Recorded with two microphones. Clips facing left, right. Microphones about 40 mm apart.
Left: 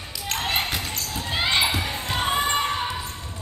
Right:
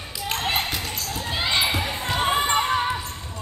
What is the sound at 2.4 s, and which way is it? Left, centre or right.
Basketball bounce, centre.